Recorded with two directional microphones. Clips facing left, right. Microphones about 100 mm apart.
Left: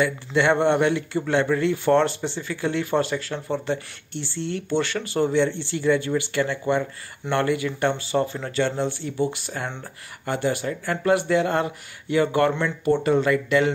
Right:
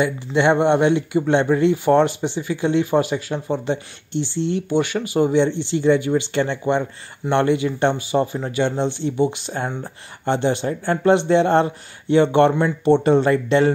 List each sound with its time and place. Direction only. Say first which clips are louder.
0.0 s speech: right 3 dB; 20° right (ahead or behind)